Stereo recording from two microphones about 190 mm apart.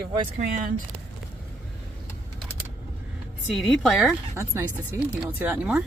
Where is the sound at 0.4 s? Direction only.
45° right (ahead or behind).